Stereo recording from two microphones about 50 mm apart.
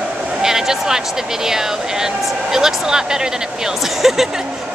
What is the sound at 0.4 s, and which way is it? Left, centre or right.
Speech, centre.